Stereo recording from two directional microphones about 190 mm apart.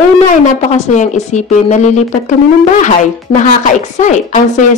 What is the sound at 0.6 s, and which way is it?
Speech, 35° left (ahead or behind).